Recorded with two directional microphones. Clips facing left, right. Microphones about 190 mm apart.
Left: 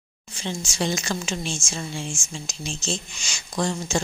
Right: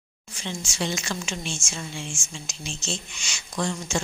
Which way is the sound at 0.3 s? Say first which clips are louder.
Left 3 dB; 35° left (ahead or behind).